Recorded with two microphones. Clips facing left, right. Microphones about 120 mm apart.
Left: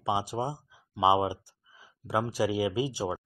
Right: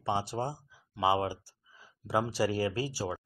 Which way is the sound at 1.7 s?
Centre (ahead or behind).